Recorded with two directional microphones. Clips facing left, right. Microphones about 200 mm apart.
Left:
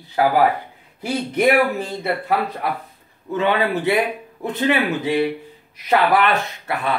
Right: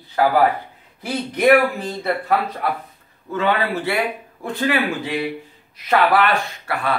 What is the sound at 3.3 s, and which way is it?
Speech, 20° left (ahead or behind).